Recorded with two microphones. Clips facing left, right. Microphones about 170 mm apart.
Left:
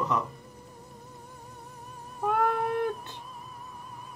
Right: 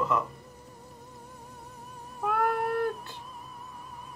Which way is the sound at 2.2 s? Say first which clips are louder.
Left 1 dB; 20° left (ahead or behind).